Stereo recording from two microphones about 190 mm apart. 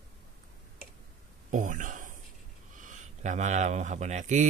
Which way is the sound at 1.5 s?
45° right (ahead or behind).